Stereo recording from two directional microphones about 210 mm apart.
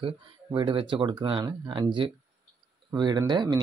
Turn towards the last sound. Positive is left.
turn(degrees=-20)  # may be behind; listen again after turning